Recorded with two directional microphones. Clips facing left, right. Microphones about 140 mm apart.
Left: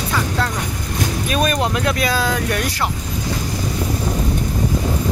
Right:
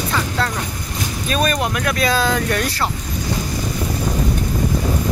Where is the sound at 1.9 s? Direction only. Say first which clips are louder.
Right 1 dB; 10° left (ahead or behind).